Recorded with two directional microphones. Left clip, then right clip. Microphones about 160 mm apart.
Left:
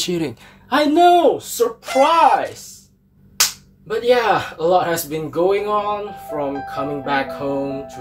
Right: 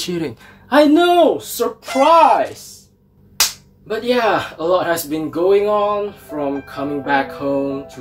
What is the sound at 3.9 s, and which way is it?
Speech, centre (ahead or behind).